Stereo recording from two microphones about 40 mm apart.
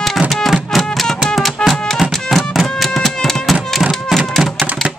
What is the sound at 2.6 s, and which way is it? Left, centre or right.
Music, centre.